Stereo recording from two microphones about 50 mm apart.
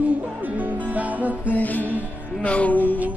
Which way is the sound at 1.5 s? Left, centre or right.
Left.